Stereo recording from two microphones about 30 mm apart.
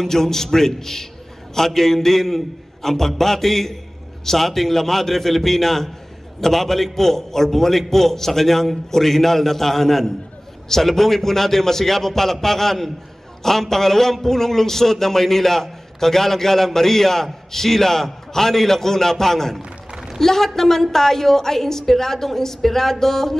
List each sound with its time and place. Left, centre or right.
0.0 s a man's voice: centre